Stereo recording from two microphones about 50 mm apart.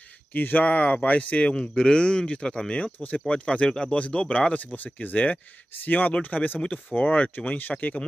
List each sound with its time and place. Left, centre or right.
0.3 s speech: left